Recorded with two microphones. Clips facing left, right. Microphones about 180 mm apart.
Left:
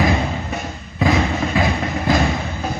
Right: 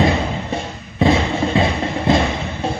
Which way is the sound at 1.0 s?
30° right (ahead or behind).